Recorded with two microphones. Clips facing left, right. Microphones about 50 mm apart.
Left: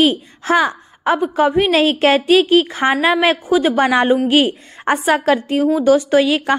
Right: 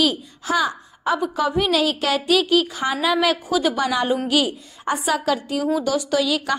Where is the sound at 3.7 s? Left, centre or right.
Left.